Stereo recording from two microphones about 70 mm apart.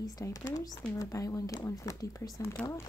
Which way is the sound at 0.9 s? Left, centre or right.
Left.